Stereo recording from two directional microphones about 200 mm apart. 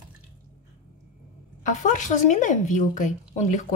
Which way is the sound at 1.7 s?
40° left (ahead or behind).